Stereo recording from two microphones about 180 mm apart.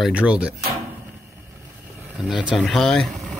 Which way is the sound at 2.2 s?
5° right (ahead or behind).